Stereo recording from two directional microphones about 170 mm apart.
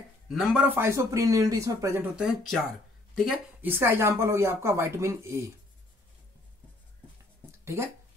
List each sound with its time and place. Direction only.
0.3 s speech: centre (ahead or behind)
0.7 s speech: 15° right (ahead or behind)
2.1 s speech: centre (ahead or behind)
3.6 s speech: 15° right (ahead or behind)
7.6 s speech: 15° right (ahead or behind)